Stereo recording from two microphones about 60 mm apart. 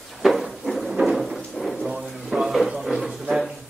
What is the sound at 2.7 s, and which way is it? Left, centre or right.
Music, centre.